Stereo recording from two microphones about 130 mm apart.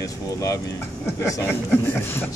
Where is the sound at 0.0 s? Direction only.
25° left (ahead or behind).